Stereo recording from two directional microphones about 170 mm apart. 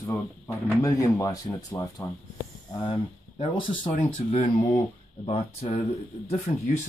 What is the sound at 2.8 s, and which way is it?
Speech, 30° left (ahead or behind).